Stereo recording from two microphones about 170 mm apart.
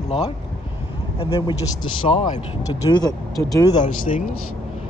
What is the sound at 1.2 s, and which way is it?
Speech, 30° left (ahead or behind).